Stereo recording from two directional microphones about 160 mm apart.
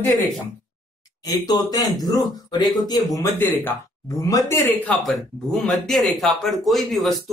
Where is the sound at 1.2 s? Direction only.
25° left (ahead or behind).